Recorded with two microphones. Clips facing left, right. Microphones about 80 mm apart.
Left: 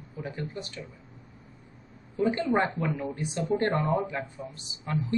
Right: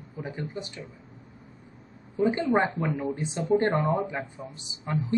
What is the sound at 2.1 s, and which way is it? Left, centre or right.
Speech, right.